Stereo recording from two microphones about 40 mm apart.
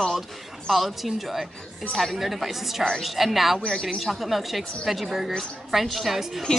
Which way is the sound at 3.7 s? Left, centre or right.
Centre.